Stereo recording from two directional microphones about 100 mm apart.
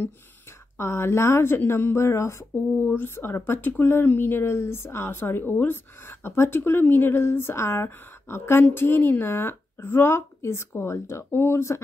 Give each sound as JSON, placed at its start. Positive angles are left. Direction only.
{"t": 0.7, "sound": "speech", "side_deg": 25}